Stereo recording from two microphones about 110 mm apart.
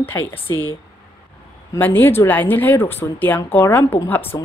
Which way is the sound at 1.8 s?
15° left (ahead or behind).